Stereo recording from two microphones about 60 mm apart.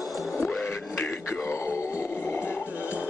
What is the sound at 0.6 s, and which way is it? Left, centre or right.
Music, left.